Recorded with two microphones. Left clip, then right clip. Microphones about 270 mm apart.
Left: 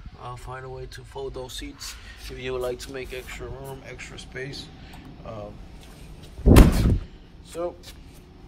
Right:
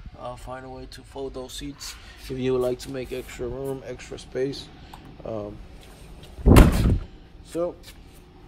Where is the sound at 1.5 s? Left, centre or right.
Centre.